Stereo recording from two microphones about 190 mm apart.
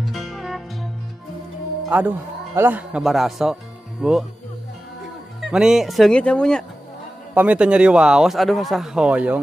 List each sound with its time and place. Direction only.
0.0 s music: centre (ahead or behind)
1.9 s speech: 10° right (ahead or behind)
5.4 s speech: 5° right (ahead or behind)
7.3 s speech: 5° right (ahead or behind)